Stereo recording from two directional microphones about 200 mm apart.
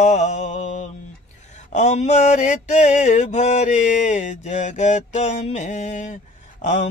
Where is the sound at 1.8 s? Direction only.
35° left (ahead or behind).